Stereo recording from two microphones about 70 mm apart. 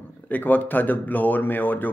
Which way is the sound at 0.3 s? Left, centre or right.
Left.